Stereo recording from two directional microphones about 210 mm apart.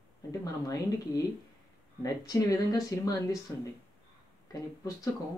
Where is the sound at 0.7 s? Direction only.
15° left (ahead or behind).